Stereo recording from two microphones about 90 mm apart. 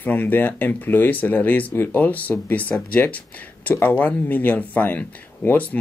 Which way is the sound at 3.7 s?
30° left (ahead or behind).